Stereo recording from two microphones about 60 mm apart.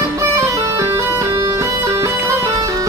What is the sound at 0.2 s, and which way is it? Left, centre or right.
Music, right.